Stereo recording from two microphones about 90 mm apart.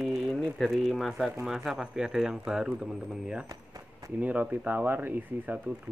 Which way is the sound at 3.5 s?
40° right (ahead or behind).